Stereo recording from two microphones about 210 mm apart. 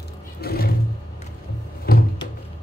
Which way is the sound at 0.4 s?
45° left (ahead or behind).